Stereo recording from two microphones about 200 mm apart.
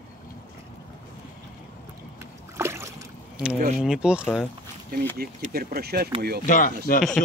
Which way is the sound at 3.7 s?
5° right (ahead or behind).